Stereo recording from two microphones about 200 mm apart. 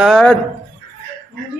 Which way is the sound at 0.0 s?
Centre (ahead or behind).